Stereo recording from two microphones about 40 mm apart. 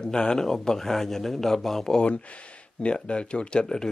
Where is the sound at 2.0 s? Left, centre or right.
Left.